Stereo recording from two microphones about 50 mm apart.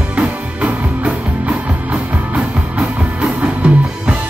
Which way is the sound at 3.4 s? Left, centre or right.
Right.